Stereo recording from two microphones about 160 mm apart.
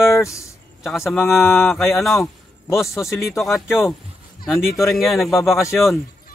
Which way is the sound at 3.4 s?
Centre (ahead or behind).